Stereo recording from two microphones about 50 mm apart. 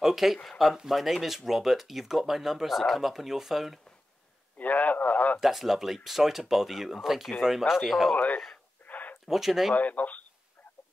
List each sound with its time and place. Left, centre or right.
0.0 s speech: centre
4.6 s radio: left
5.4 s speech: centre
7.8 s speech: centre
8.1 s speech: left
8.8 s a sound: left
9.3 s speech: centre
9.8 s speech: left